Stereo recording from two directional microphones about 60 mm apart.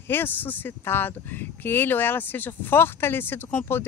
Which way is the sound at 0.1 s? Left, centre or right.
Left.